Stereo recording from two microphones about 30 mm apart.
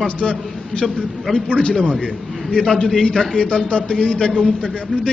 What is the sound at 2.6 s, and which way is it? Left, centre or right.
Speech, centre.